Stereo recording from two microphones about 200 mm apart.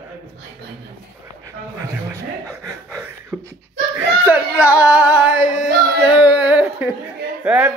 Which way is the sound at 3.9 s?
10° right (ahead or behind).